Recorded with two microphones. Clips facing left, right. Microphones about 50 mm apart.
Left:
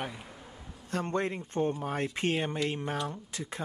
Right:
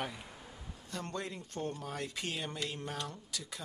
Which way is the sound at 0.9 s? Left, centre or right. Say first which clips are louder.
Left 9 dB; left.